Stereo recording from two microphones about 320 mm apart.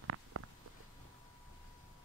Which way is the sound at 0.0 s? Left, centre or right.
Right.